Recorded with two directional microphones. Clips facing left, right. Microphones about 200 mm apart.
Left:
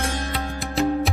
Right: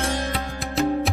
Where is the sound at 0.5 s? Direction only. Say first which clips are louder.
Left 1 dB; centre (ahead or behind).